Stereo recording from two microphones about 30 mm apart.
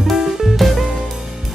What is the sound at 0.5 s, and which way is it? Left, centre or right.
Music, centre.